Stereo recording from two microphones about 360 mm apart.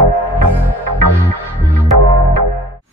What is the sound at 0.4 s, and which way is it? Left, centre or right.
Music, right.